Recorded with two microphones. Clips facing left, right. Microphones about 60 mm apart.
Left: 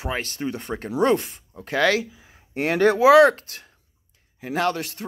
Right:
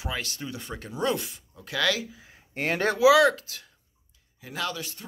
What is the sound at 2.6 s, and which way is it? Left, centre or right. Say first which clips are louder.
Speech: left 7 dB; left.